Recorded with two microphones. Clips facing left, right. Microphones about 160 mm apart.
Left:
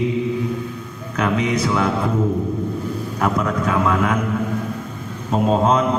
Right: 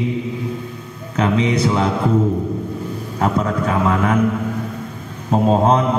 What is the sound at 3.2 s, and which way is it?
A man's voice, 25° right (ahead or behind).